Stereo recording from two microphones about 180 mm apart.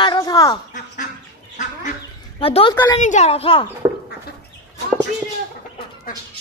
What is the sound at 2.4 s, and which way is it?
A woman's voice, 30° left (ahead or behind).